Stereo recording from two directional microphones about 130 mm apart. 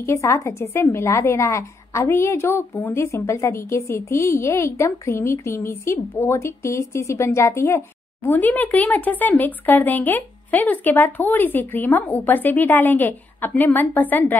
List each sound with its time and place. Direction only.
0.0 s a woman's voice: 20° left (ahead or behind)